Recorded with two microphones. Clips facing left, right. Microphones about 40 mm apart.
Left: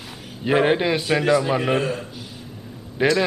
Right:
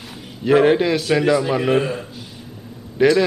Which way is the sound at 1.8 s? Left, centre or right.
Centre.